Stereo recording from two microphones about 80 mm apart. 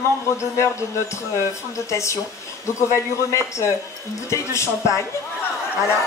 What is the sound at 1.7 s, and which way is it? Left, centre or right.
Speech, left.